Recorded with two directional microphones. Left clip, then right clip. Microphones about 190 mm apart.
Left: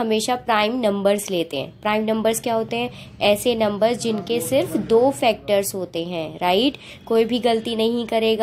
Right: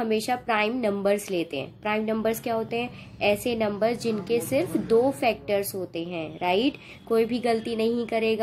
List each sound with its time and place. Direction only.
0.0 s a woman's voice: 20° left (ahead or behind)